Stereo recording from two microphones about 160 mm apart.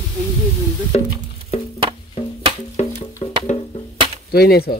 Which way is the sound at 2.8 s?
35° left (ahead or behind).